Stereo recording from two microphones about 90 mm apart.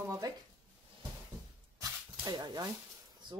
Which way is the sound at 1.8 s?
50° right (ahead or behind).